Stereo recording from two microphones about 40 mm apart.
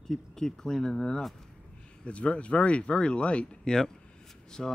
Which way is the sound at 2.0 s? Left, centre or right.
Left.